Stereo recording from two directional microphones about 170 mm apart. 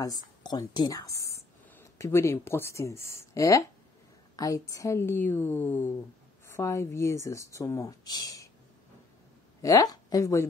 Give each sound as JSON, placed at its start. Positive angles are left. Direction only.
{"t": 0.0, "sound": "speech", "side_deg": 25}
{"t": 9.6, "sound": "speech", "side_deg": 20}